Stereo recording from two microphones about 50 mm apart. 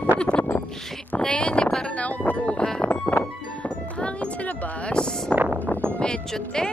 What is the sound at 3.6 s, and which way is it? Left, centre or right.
Speech, left.